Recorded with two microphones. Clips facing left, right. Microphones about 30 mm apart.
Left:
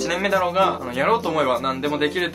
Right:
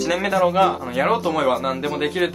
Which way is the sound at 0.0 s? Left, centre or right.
Centre.